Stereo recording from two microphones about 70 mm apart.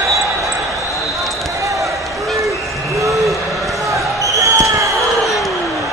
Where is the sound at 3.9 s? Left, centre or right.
Right.